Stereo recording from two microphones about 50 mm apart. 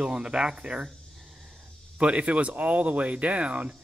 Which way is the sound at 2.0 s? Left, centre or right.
Right.